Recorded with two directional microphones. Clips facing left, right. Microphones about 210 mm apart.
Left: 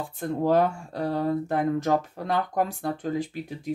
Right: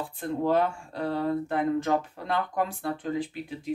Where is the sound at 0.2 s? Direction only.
40° left (ahead or behind).